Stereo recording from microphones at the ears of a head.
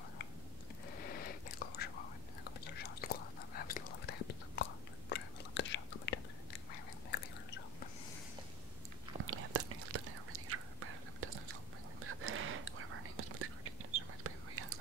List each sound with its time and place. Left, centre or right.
0.9 s whispering: left
6.7 s chewing: left
9.2 s whispering: right